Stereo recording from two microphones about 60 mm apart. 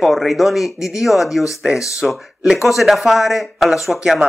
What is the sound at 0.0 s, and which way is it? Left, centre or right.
Speech, centre.